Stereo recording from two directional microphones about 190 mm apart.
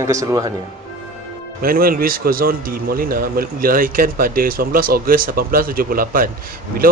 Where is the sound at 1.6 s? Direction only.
50° right (ahead or behind).